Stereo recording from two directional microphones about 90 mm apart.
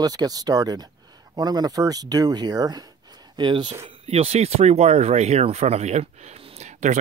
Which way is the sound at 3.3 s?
60° right (ahead or behind).